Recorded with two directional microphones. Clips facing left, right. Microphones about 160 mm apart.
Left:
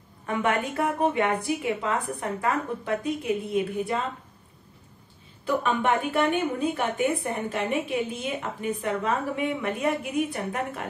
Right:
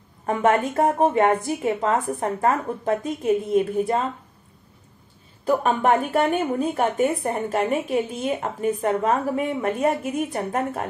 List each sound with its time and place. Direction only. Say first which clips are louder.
0.3 s a woman's voice: right 6 dB; 40° right (ahead or behind)
5.4 s a woman's voice: right 4 dB; 40° right (ahead or behind)